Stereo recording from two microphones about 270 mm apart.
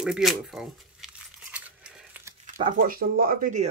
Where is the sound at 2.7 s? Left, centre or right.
Right.